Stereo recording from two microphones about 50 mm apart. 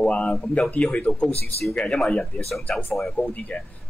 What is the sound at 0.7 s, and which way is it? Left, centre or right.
Speech, centre.